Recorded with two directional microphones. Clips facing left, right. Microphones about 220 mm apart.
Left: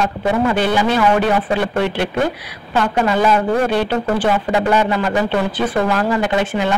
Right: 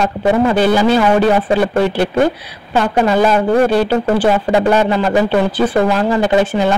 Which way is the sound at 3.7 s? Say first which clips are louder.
Right 4 dB; 35° right (ahead or behind).